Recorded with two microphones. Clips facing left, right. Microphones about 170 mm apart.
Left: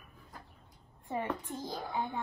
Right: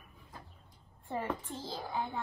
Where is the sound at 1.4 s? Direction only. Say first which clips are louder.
Left 2 dB; 15° left (ahead or behind).